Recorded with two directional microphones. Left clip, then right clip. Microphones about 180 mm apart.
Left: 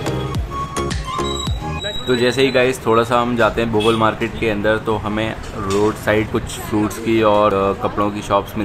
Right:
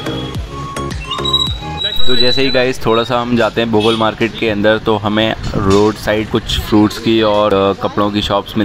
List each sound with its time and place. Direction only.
2.0 s speech: 40° right (ahead or behind)